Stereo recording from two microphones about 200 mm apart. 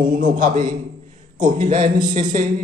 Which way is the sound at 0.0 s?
40° right (ahead or behind).